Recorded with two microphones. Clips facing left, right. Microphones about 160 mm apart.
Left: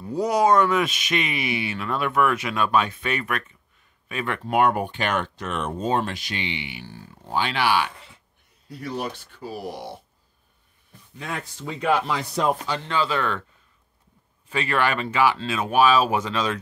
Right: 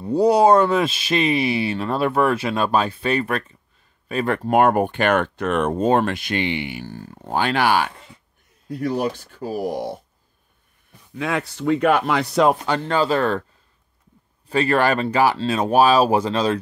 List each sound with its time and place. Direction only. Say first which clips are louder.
0.0 s speech: right 6 dB; 30° right (ahead or behind); by 9.8 s 45° right (ahead or behind)
11.1 s speech: right 9 dB; 90° right
12.7 s speech: right 5 dB; 45° right (ahead or behind)
14.5 s speech: right 6 dB; 40° right (ahead or behind)